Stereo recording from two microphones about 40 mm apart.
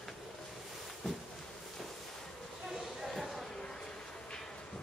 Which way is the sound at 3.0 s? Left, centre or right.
Centre.